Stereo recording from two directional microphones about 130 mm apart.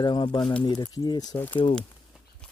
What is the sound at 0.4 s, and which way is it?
Speech, 10° left (ahead or behind).